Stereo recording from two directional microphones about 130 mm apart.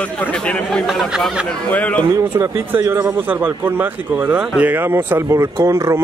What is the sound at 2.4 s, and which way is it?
A man's voice, 15° right (ahead or behind).